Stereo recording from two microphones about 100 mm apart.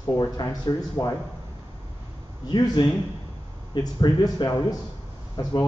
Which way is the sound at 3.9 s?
40° left (ahead or behind).